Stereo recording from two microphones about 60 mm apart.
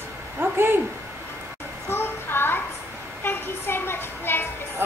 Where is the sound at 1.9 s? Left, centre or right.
Left.